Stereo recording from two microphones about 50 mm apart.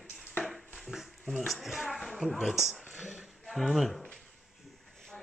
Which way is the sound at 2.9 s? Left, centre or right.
Right.